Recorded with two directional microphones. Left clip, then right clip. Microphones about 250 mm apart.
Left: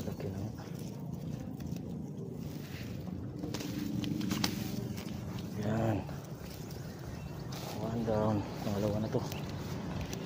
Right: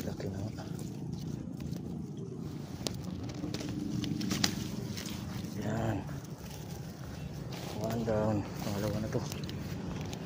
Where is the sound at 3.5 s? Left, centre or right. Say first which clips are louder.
Left 1 dB; right.